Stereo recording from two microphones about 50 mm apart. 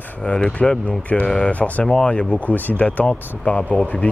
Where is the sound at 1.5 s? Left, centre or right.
Left.